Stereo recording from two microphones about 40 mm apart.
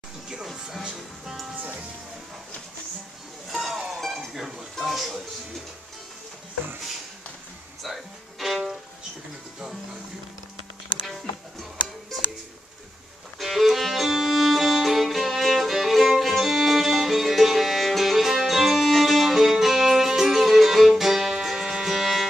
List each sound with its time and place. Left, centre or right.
1.3 s music: centre
1.6 s music: right
3.4 s music: centre
4.3 s a sound: centre
7.8 s music: centre
13.4 s music: centre